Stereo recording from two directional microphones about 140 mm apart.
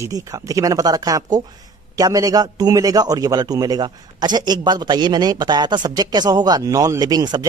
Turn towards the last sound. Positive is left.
turn(degrees=-30)  # may be behind; listen again after turning